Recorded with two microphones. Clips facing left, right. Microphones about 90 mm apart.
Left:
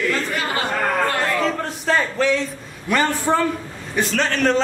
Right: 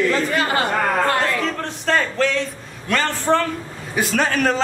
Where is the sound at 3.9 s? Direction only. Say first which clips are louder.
Right 1 dB; 5° right (ahead or behind).